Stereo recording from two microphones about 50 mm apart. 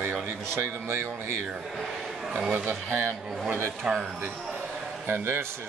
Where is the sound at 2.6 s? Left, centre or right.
Right.